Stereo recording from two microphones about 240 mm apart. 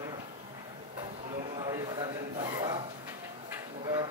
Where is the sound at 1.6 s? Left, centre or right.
Centre.